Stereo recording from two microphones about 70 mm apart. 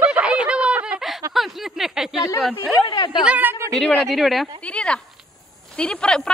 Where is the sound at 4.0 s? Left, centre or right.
Centre.